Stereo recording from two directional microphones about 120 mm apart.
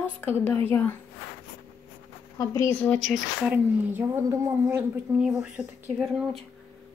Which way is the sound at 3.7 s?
15° right (ahead or behind).